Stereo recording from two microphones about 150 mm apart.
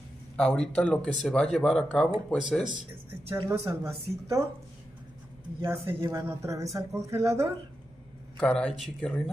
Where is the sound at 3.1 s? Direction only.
15° right (ahead or behind).